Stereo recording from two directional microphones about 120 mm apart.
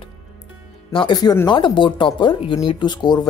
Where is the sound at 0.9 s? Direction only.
35° left (ahead or behind).